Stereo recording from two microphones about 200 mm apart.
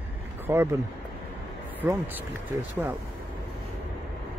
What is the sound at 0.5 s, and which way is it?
Speech, 15° right (ahead or behind).